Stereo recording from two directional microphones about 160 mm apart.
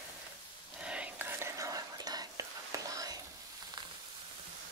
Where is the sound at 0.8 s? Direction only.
5° right (ahead or behind).